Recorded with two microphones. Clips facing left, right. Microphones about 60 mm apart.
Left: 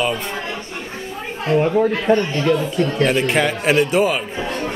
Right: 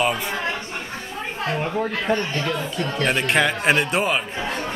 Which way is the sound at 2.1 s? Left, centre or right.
Centre.